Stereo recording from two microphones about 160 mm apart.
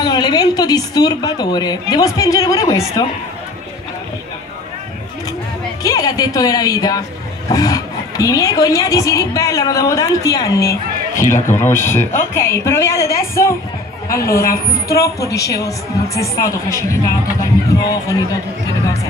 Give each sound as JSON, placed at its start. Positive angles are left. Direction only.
{"t": 0.0, "sound": "speech", "side_deg": 25}
{"t": 5.8, "sound": "a woman's voice", "side_deg": 20}
{"t": 14.9, "sound": "speech", "side_deg": 20}